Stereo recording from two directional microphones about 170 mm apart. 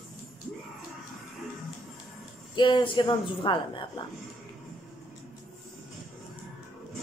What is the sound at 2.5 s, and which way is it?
A woman's voice, 25° left (ahead or behind).